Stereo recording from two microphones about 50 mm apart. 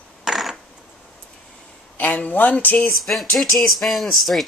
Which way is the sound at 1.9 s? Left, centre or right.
Left.